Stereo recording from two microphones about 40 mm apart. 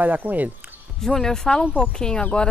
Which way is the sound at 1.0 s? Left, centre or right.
Centre.